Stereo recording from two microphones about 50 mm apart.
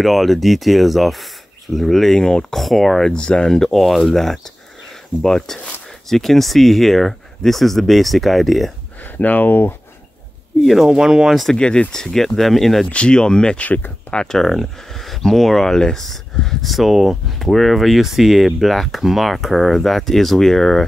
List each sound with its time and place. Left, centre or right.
0.0 s speech: centre
3.2 s speech: centre
9.0 s speech: left
10.6 s speech: centre
10.9 s speech: centre
11.5 s speech: centre
12.9 s speech: centre
13.6 s speech: left
14.1 s speech: centre